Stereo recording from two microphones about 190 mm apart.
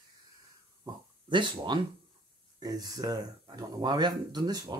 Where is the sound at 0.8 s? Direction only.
25° right (ahead or behind).